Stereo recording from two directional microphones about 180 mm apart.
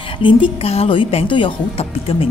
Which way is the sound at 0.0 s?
25° left (ahead or behind).